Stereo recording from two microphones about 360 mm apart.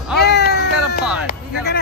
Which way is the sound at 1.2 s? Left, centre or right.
Left.